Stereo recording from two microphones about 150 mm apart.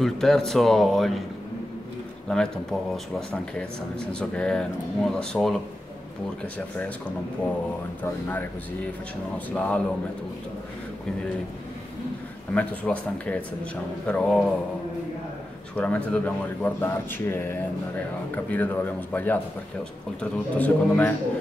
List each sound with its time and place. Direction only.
0.0 s speech: centre (ahead or behind)
2.2 s speech: 5° left (ahead or behind)
8.0 s speech: 15° left (ahead or behind)
9.5 s speech: 10° left (ahead or behind)
12.5 s speech: 10° left (ahead or behind)
15.7 s speech: 10° left (ahead or behind)